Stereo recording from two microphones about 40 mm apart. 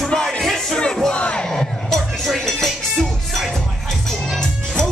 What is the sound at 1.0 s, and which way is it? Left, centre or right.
Crowd, left.